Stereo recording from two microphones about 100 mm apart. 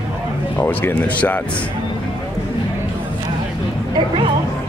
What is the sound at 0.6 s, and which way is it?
Speech, 20° left (ahead or behind).